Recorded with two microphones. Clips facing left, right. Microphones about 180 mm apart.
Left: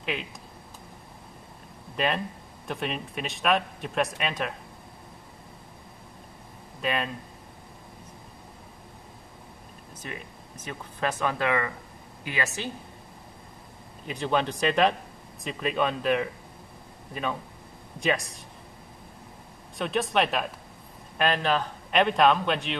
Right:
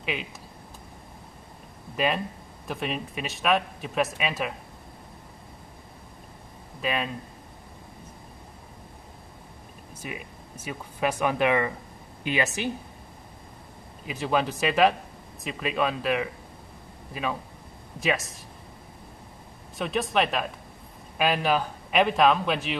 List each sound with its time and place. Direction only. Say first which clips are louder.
0.0 s speech: even; centre (ahead or behind)
2.0 s speech: right 1 dB; centre (ahead or behind)
6.8 s speech: even; centre (ahead or behind)
10.0 s speech: right 2 dB; 10° right (ahead or behind)
14.0 s speech: right 1 dB; 5° right (ahead or behind)
19.8 s speech: even; centre (ahead or behind)